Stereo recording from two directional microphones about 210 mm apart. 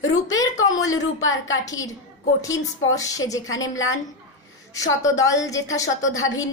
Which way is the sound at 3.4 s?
70° left (ahead or behind).